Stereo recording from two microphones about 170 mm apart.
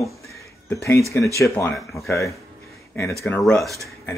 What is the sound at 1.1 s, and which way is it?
Speech, 15° left (ahead or behind).